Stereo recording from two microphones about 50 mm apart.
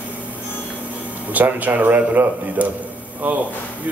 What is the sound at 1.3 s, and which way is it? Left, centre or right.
A man's voice, right.